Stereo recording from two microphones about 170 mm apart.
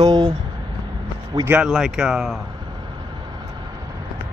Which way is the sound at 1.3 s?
20° right (ahead or behind).